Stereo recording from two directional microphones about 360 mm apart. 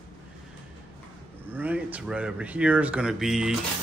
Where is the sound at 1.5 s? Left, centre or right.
Centre.